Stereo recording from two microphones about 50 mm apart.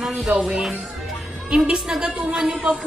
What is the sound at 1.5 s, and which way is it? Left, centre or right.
A woman's voice, centre.